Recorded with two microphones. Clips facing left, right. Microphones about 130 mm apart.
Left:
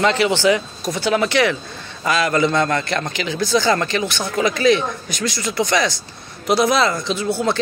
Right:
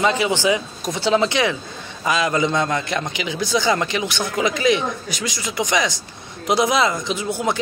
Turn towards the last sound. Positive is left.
turn(degrees=-15)  # may be behind; listen again after turning